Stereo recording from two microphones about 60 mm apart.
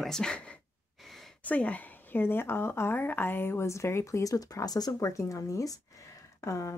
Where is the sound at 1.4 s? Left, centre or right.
Left.